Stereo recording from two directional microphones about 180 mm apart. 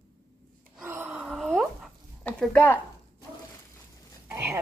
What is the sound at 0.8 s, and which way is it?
Gasp, 10° right (ahead or behind).